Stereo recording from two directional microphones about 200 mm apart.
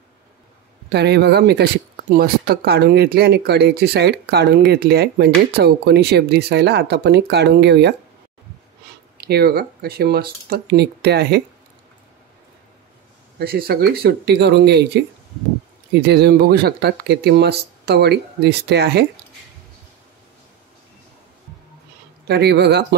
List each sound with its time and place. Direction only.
0.9 s speech: 55° right (ahead or behind)
9.2 s speech: 50° right (ahead or behind)
13.4 s speech: 50° right (ahead or behind)
16.1 s speech: 50° right (ahead or behind)
22.3 s speech: 55° right (ahead or behind)